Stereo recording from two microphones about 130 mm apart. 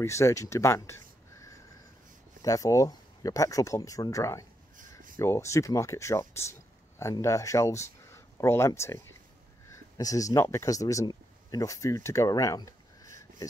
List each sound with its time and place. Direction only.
0.0 s speech: 20° left (ahead or behind)